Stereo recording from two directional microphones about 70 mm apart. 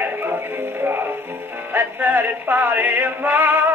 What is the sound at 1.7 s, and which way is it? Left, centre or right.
Music, right.